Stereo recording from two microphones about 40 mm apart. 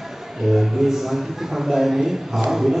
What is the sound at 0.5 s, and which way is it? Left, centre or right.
A man's voice, centre.